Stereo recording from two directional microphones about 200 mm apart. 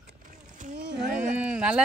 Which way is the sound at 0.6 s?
40° right (ahead or behind).